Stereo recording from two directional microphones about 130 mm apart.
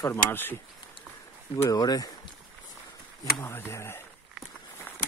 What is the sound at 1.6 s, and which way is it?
Speech, 30° left (ahead or behind).